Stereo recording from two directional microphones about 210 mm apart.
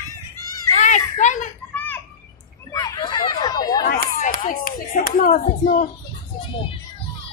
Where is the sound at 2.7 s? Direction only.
15° left (ahead or behind).